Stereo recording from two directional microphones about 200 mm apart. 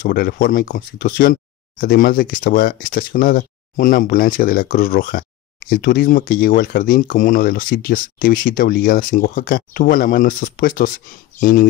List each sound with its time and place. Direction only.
0.0 s speech: 45° left (ahead or behind)